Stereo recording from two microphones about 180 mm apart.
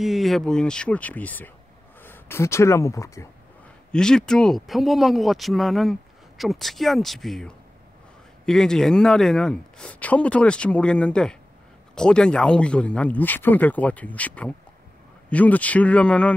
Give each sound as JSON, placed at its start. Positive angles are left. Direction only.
{"t": 0.0, "sound": "speech", "side_deg": 0}
{"t": 3.9, "sound": "speech", "side_deg": 5}